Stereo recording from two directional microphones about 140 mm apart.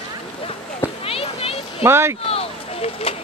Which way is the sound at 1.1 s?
45° left (ahead or behind).